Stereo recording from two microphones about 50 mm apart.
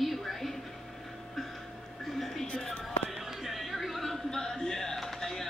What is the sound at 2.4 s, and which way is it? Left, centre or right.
Music, left.